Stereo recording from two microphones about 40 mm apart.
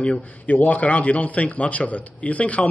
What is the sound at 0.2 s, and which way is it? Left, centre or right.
A man's voice, left.